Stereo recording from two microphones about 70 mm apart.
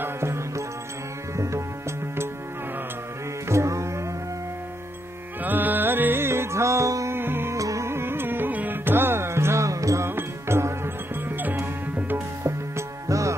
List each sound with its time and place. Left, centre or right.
0.0 s music: right
3.4 s music: right
5.4 s music: right
7.2 s music: right
7.5 s music: right
10.0 s music: right
12.4 s music: right